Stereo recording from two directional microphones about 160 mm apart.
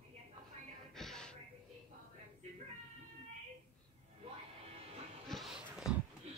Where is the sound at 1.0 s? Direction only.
5° left (ahead or behind).